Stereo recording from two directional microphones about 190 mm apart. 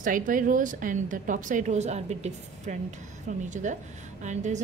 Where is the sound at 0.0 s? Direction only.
45° right (ahead or behind).